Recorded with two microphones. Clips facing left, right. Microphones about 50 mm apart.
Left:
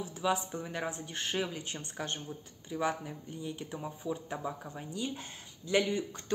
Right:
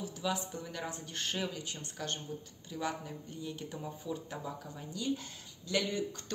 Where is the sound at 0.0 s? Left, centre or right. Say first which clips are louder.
Left 4 dB; left.